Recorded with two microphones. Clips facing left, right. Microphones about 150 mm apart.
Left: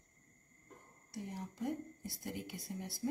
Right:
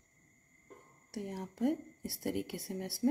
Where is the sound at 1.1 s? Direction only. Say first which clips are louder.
Right 4 dB; 75° right (ahead or behind).